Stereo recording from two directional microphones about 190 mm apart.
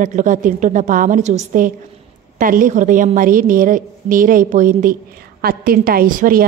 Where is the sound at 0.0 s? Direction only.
40° right (ahead or behind).